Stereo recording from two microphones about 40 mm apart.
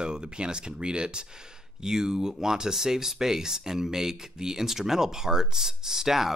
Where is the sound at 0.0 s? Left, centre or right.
Right.